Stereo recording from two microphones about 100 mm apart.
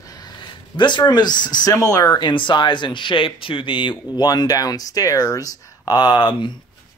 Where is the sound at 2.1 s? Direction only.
50° left (ahead or behind).